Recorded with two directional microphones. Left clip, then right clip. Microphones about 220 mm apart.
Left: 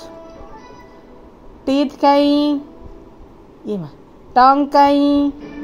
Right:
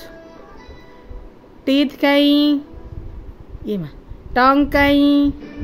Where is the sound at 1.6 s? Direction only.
15° right (ahead or behind).